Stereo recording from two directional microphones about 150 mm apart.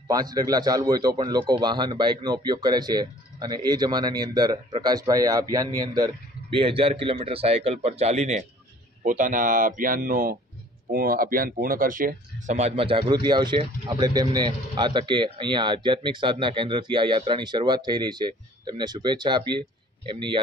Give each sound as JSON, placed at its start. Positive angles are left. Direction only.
{"t": 0.1, "sound": "speech", "side_deg": -25}
{"t": 9.0, "sound": "speech", "side_deg": -60}